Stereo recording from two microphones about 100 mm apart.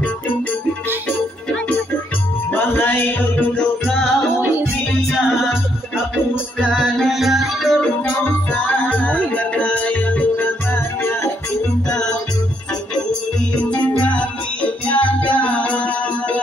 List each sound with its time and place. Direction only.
2.5 s music: 20° left (ahead or behind)
3.5 s music: 5° left (ahead or behind)
6.7 s music: centre (ahead or behind)
8.2 s music: 20° left (ahead or behind)
11.9 s music: 5° left (ahead or behind)
13.7 s music: 15° left (ahead or behind)